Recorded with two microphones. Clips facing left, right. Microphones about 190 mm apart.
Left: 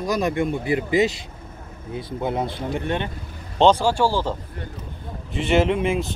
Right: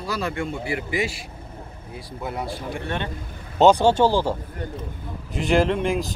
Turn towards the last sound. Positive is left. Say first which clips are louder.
# left 1 dB
turn(degrees=5)  # may be behind; listen again after turning